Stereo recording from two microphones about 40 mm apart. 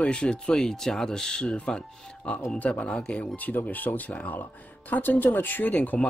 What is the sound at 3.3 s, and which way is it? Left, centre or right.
A man's voice, left.